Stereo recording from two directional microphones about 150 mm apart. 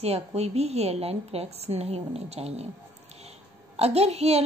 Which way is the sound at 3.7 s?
45° right (ahead or behind).